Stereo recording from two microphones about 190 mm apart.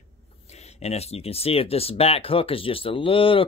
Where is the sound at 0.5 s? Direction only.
35° left (ahead or behind).